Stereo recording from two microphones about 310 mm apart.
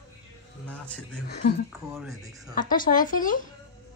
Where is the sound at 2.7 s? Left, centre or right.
Left.